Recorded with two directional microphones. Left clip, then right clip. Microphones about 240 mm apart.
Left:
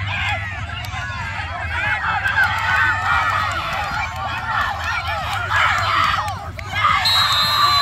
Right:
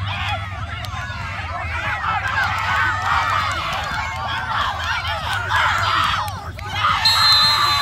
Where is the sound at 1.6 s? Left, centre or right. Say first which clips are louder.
Left 3 dB; centre.